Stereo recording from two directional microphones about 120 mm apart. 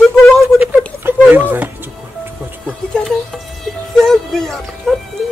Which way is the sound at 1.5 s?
15° right (ahead or behind).